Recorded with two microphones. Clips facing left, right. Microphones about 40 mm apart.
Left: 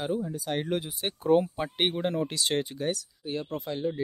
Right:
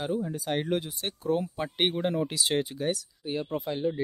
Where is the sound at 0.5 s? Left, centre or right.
Centre.